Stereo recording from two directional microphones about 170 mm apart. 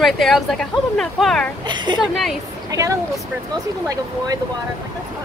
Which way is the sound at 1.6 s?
25° right (ahead or behind).